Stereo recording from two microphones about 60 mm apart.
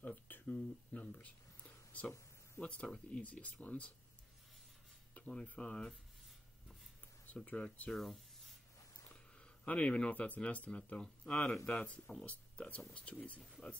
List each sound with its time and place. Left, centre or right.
0.0 s speech: left
5.1 s speech: centre
7.4 s speech: left
7.9 s speech: centre
9.7 s speech: centre